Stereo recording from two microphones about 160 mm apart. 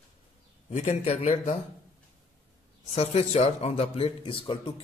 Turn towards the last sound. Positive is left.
turn(degrees=30)  # may be behind; listen again after turning